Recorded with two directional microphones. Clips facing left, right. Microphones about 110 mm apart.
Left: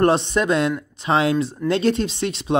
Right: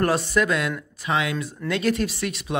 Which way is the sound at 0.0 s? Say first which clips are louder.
Left 4 dB; 25° left (ahead or behind).